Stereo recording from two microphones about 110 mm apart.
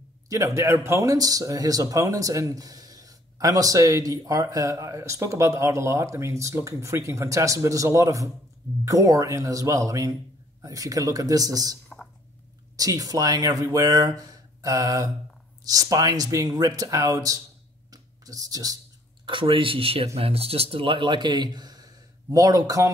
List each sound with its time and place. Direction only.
0.3 s speech: 30° right (ahead or behind)
17.9 s a sound: 35° right (ahead or behind)
19.2 s speech: 50° right (ahead or behind); by 22.8 s 35° right (ahead or behind)